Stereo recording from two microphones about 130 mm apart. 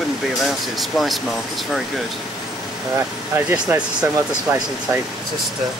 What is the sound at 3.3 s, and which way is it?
Speech, 15° right (ahead or behind).